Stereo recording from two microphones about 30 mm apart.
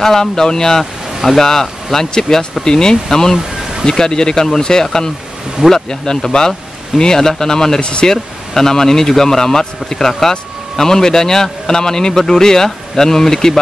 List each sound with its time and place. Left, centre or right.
0.0 s speech: centre
7.8 s speech: left
8.1 s speech: centre